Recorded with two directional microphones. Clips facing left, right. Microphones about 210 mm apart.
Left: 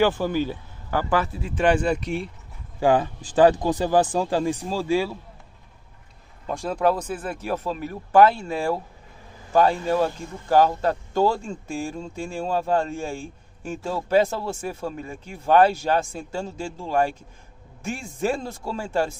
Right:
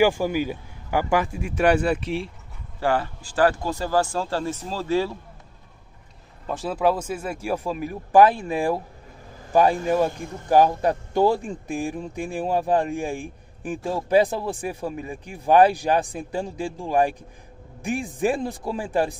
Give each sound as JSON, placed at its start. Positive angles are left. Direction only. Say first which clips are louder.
{"t": 0.0, "sound": "speech", "louder": "right 1 dB", "side_deg": -10}
{"t": 2.8, "sound": "speech", "louder": "left 4 dB", "side_deg": 20}
{"t": 6.4, "sound": "speech", "louder": "even", "side_deg": -5}